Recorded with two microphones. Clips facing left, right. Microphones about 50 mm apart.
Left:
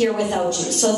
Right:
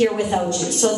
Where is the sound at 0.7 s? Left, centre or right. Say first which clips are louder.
Right 1 dB; right.